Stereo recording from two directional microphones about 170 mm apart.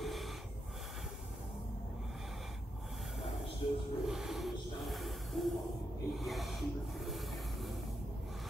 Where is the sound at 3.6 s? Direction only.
30° left (ahead or behind).